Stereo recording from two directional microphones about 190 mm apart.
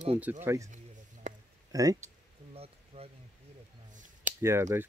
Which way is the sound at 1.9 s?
35° right (ahead or behind).